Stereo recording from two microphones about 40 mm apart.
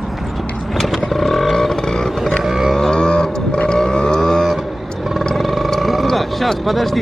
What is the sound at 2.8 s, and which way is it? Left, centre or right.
Vehicle, centre.